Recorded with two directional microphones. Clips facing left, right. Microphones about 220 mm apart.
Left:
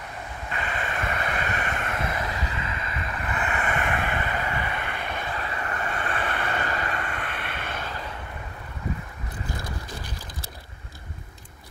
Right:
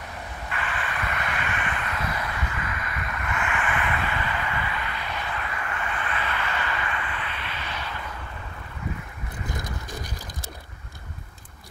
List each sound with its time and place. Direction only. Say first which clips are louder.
0.7 s vehicle: left 3 dB; 40° left (ahead or behind)
2.0 s vehicle: left 1 dB; 25° left (ahead or behind); by 5.2 s 50° left (ahead or behind)
5.3 s vehicle: left 1 dB; 35° left (ahead or behind)